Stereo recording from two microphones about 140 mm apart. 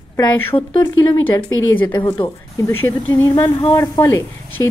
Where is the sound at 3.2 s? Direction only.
20° left (ahead or behind).